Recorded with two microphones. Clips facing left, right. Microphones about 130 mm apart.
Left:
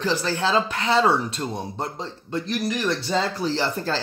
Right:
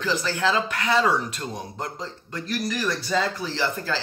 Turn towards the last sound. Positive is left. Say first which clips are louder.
# left 2 dB
turn(degrees=35)  # may be behind; listen again after turning